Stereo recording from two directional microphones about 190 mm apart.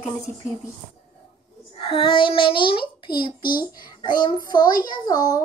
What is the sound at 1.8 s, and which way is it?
A child's voice, 25° left (ahead or behind).